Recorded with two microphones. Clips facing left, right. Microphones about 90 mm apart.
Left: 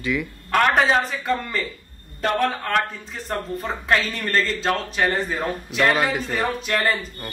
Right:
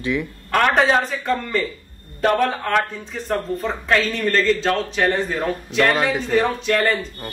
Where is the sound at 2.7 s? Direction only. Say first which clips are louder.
Right 2 dB; centre (ahead or behind).